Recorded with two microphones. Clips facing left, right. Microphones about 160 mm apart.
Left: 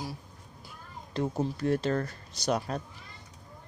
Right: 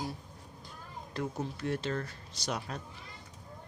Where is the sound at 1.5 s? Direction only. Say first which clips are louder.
Left 6 dB; 40° left (ahead or behind).